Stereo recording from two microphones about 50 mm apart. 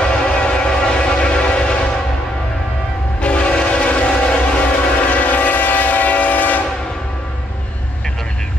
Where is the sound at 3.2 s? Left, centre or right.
Left.